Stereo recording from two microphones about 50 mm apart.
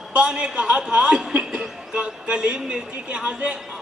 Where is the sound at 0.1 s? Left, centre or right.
Centre.